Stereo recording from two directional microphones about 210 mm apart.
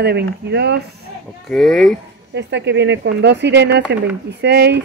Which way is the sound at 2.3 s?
55° right (ahead or behind).